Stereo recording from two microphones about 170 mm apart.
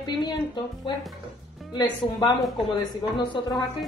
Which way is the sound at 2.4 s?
Centre (ahead or behind).